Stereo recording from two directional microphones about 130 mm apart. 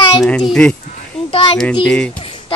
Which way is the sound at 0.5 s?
10° left (ahead or behind).